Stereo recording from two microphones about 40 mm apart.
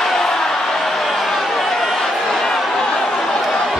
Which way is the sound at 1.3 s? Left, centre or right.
Centre.